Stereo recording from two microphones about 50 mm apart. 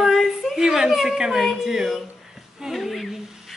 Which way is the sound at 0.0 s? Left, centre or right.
Centre.